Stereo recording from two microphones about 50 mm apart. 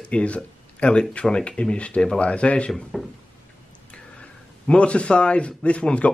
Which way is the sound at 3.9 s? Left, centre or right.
Left.